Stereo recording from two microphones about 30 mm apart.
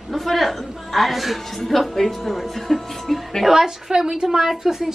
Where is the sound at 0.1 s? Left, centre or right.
Centre.